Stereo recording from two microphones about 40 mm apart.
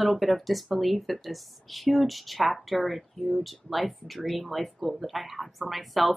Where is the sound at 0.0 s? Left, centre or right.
Centre.